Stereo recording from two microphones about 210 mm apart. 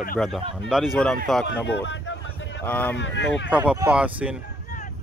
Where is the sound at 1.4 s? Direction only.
60° left (ahead or behind).